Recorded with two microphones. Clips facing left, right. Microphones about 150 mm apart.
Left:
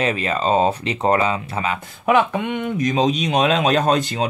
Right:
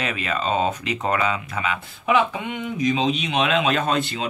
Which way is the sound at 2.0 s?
55° left (ahead or behind).